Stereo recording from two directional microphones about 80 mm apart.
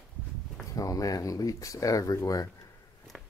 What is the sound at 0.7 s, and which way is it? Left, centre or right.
A man's voice, left.